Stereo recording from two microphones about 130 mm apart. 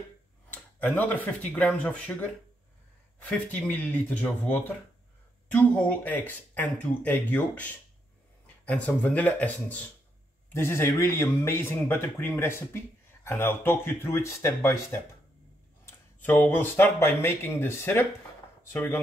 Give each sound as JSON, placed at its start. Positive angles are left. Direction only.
{"t": 0.5, "sound": "speech", "side_deg": 15}